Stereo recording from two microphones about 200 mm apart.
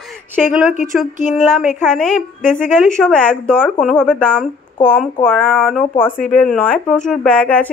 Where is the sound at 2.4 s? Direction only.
40° left (ahead or behind).